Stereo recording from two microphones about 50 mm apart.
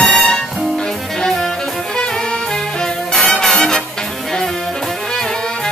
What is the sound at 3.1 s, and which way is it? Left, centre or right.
Music, centre.